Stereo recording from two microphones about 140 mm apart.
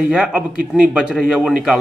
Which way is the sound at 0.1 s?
5° right (ahead or behind).